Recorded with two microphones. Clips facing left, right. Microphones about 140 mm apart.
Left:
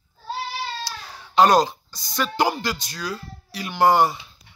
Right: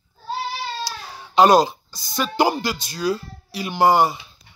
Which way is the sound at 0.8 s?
5° right (ahead or behind).